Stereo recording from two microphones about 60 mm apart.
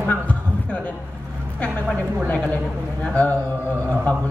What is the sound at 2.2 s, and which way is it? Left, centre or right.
Speech, left.